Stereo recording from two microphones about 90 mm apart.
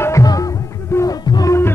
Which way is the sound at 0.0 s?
40° left (ahead or behind).